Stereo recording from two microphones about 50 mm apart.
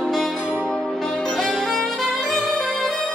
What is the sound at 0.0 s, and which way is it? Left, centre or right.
Music, centre.